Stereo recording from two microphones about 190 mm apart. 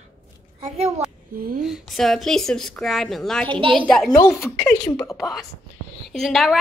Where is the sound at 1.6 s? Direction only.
Centre (ahead or behind); by 5.1 s 15° left (ahead or behind).